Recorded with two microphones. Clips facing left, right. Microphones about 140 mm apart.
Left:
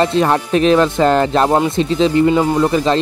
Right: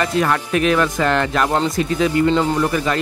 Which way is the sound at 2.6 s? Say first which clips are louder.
Left 5 dB; 25° left (ahead or behind).